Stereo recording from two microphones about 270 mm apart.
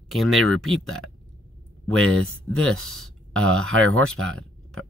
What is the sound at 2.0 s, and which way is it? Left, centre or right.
Speech, right.